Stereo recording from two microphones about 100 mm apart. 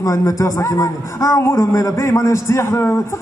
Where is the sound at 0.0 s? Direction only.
35° left (ahead or behind).